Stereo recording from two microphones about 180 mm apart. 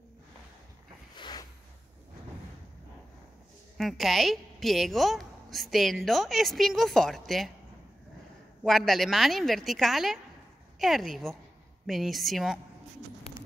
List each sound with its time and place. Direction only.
1.1 s a sound: 25° left (ahead or behind)
3.7 s a woman's voice: centre (ahead or behind)
8.6 s a woman's voice: centre (ahead or behind)